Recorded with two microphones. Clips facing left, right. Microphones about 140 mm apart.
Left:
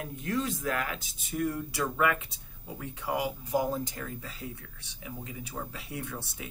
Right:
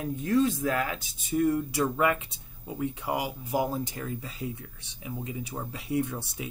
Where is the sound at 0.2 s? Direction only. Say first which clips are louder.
Right 7 dB; 30° right (ahead or behind).